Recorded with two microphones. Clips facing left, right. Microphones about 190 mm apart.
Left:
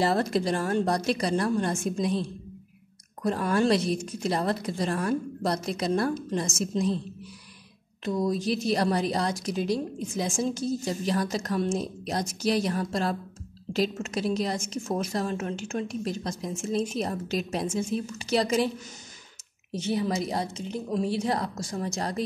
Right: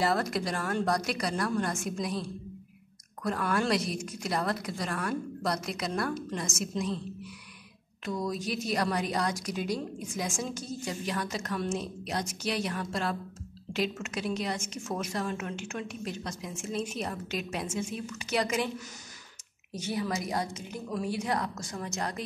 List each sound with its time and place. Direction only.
0.0 s a woman's voice: 25° left (ahead or behind)
8.0 s a woman's voice: 25° left (ahead or behind)
19.7 s a woman's voice: 25° left (ahead or behind)